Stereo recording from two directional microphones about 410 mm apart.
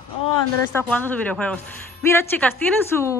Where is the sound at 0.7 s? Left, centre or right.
Centre.